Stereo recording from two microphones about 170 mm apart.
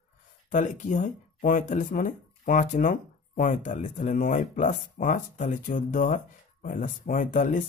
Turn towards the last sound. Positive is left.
turn(degrees=50)  # may be behind; listen again after turning